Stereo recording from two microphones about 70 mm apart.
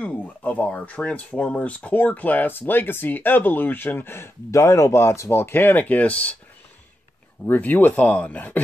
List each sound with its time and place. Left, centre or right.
0.2 s speech: left
4.5 s speech: left
5.3 s speech: left
7.4 s speech: left